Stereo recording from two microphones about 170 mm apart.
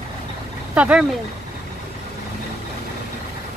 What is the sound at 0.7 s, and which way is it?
Speech, 5° right (ahead or behind).